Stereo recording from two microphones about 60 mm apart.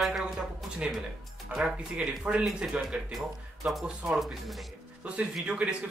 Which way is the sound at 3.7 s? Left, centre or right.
Centre.